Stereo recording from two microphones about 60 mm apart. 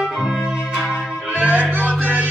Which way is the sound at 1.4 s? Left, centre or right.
Right.